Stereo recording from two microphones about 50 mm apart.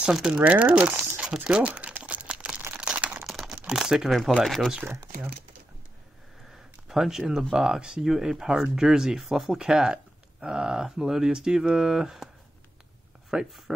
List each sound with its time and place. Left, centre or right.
0.0 s speech: centre
0.4 s speech: right
1.2 s speech: centre
2.0 s typing: right
2.7 s crumpling: right
3.3 s crumpling: centre
3.6 s speech: centre
6.9 s speech: centre
13.3 s speech: centre